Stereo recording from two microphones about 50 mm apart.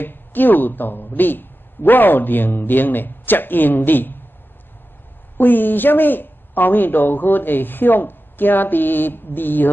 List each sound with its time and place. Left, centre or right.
0.0 s speech: left
5.4 s speech: left